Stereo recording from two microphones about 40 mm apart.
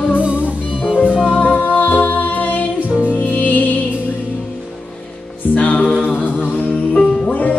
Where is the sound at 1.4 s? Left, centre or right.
Left.